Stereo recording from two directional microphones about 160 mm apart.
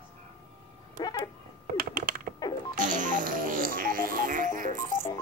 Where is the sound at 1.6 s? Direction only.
60° right (ahead or behind).